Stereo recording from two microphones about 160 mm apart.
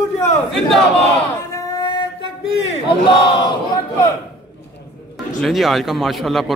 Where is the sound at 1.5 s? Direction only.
25° left (ahead or behind).